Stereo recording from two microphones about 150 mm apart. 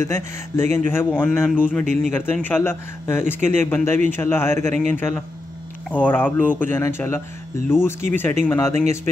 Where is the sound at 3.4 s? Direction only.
55° right (ahead or behind).